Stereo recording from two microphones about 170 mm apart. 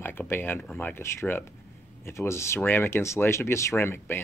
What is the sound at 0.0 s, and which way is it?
Speech, 10° left (ahead or behind).